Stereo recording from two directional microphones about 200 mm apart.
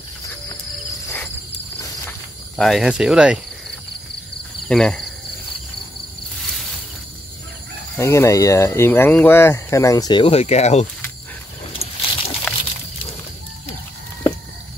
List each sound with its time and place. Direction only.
2.5 s speech: centre (ahead or behind)
4.6 s speech: 5° left (ahead or behind)
8.0 s speech: 15° left (ahead or behind); by 10.9 s 35° left (ahead or behind)
11.8 s a sound: 30° left (ahead or behind)